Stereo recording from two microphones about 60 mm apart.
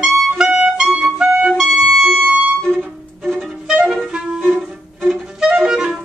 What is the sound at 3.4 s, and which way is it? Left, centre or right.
Music, centre.